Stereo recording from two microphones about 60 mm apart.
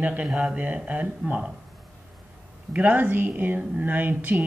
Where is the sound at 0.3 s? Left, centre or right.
Centre.